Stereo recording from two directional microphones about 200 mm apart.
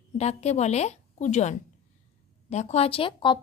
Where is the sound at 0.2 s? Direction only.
35° left (ahead or behind).